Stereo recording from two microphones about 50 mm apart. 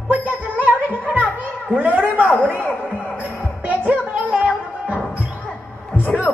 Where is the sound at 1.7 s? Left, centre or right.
Right.